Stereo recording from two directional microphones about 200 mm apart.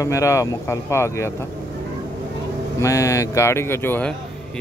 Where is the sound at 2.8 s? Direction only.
15° left (ahead or behind).